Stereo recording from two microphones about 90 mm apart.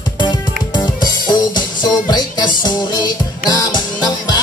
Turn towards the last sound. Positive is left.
turn(degrees=50)  # may be behind; listen again after turning